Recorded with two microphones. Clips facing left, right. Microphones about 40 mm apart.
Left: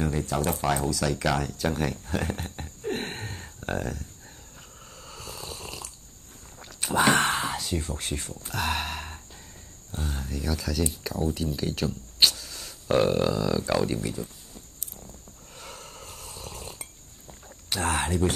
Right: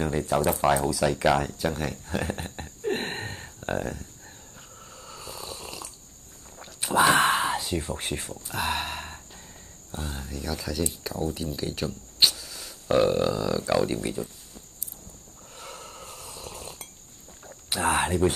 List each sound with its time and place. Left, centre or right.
0.0 s speech: centre
1.6 s speech: centre
2.9 s a sound: centre
3.3 s a sound: centre
5.0 s snoring: centre
6.6 s walk: centre
7.4 s speech: centre
8.5 s a sound: centre
9.8 s speech: centre
14.0 s speech: right
15.5 s snort: centre
17.5 s speech: centre